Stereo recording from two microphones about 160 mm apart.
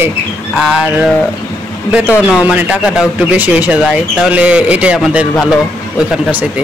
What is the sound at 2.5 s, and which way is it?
Speech, 5° right (ahead or behind).